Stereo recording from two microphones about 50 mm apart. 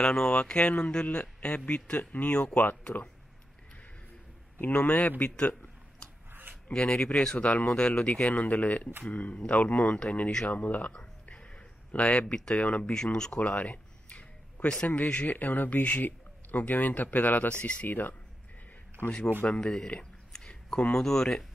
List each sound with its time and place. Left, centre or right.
0.0 s a man's voice: centre; by 2.8 s left
2.8 s speech: left
4.6 s a man's voice: left
6.7 s speech: centre
8.1 s a man's voice: left
11.0 s a sound: left
12.4 s speech: centre
13.4 s speech: left
17.8 s a man's voice: left
19.4 s speech: left
20.3 s a sound: centre
20.9 s speech: centre